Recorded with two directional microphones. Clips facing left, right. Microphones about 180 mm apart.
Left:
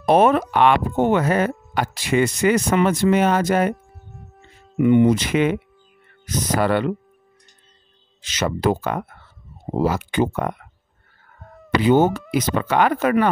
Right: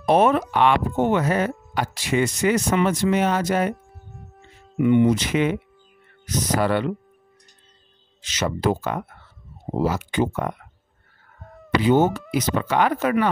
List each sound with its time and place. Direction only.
0.0 s speech: 55° left (ahead or behind)
3.9 s music: centre (ahead or behind)
4.8 s speech: 50° left (ahead or behind)
8.2 s speech: 55° left (ahead or behind)
11.4 s fowl: centre (ahead or behind)
11.8 s speech: 60° left (ahead or behind)